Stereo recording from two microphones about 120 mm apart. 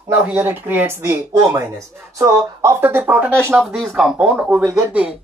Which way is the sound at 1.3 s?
35° right (ahead or behind).